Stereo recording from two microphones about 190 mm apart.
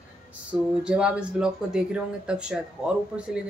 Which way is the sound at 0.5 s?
5° right (ahead or behind).